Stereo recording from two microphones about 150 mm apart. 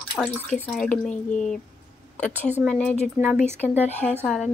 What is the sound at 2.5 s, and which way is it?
Speech, 5° right (ahead or behind).